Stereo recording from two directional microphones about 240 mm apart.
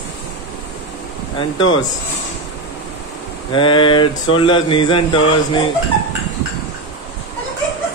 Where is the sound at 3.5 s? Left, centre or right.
Left.